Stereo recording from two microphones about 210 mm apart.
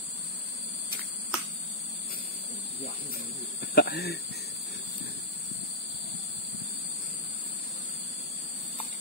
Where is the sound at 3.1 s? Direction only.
50° left (ahead or behind).